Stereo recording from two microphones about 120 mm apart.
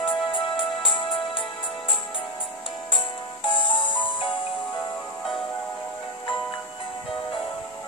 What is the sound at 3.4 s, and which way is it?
Music, 45° left (ahead or behind).